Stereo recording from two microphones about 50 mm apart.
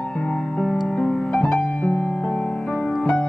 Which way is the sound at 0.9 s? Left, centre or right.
Centre.